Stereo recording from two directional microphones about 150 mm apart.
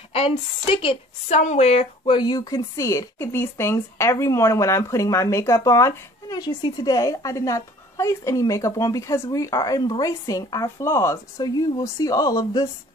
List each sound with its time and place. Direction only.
0.1 s a woman's voice: 40° left (ahead or behind)
2.1 s speech: 25° left (ahead or behind)